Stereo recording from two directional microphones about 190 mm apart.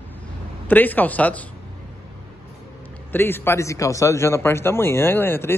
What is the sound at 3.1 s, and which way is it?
Speech, 10° left (ahead or behind).